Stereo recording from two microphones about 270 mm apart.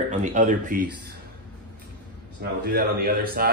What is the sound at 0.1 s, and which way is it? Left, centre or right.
Speech, right.